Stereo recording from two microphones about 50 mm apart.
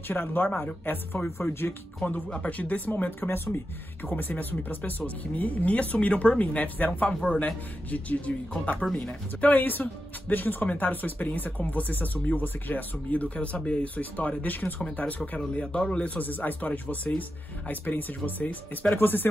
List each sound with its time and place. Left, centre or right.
0.1 s speech: left
2.3 s speech: left
3.2 s speech: left
4.0 s speech: left
8.9 s speech: centre
9.5 s speech: left; by 16.0 s centre
16.0 s speech: left